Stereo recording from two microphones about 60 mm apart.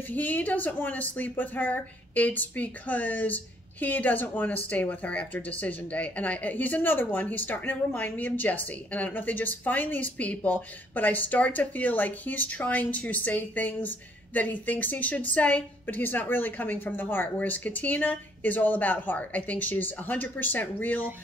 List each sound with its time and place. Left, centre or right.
0.1 s speech: left